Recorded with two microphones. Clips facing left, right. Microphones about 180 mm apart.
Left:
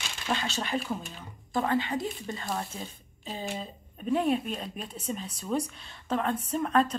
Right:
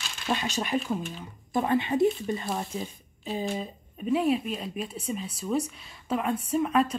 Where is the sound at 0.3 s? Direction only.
15° right (ahead or behind).